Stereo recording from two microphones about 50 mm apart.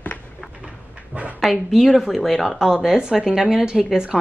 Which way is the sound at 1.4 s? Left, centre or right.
Centre.